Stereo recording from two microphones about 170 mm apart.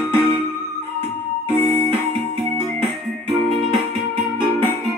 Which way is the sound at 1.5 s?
35° right (ahead or behind).